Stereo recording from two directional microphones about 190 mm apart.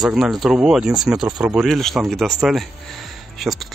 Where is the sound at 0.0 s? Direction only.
Centre (ahead or behind).